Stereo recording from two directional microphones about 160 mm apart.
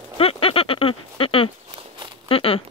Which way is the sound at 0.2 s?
35° left (ahead or behind).